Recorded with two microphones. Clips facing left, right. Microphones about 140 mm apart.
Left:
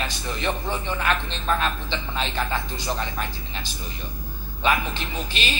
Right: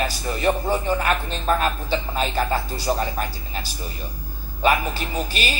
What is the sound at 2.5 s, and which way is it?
Speech, 10° right (ahead or behind).